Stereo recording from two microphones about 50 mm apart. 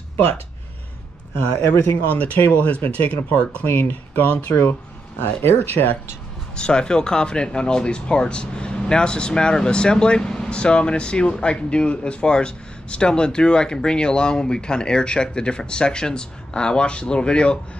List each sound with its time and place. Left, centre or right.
1.6 s speech: left
2.0 s speech: left
5.2 s speech: left
6.5 s speech: centre